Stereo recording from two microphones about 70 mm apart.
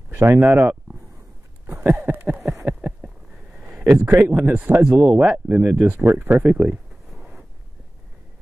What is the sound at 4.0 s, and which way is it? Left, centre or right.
Speech, right.